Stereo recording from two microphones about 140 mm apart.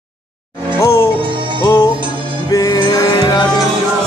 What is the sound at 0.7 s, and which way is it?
Music, 20° left (ahead or behind).